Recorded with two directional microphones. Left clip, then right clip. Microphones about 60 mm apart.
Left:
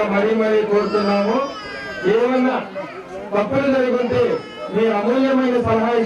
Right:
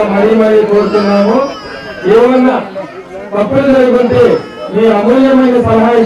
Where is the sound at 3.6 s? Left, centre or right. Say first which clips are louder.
Right 10 dB; left.